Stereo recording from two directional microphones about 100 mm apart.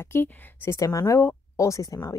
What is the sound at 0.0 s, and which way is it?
Speech, 20° left (ahead or behind).